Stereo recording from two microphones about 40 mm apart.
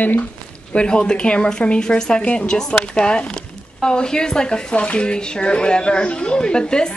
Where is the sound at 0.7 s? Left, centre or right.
Left.